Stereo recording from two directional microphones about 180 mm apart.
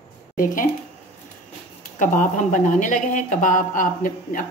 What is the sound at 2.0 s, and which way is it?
Speech, 45° left (ahead or behind).